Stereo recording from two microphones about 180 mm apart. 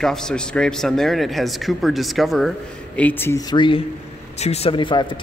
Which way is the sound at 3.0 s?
10° left (ahead or behind).